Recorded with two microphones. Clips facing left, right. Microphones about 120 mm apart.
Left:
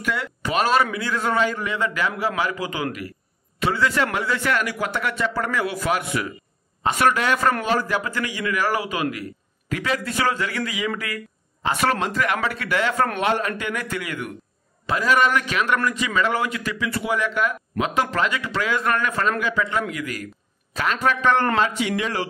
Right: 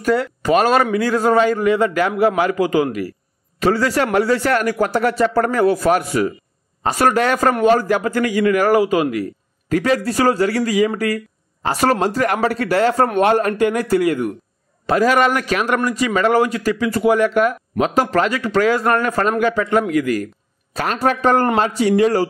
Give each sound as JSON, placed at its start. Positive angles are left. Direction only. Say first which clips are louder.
{"t": 0.0, "sound": "a man's voice", "louder": "right 9 dB", "side_deg": -40}